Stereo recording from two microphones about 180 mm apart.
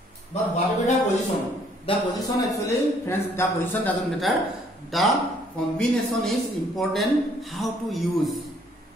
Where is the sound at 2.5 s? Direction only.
15° left (ahead or behind).